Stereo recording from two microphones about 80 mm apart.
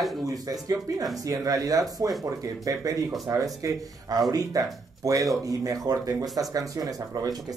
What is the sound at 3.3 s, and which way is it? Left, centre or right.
Speech, right.